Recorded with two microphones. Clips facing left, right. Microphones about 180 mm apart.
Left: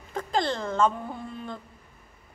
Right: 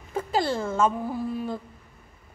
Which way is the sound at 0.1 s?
5° right (ahead or behind).